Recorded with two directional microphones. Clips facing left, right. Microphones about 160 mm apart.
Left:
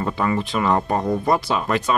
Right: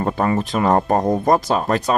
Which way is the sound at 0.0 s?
40° right (ahead or behind).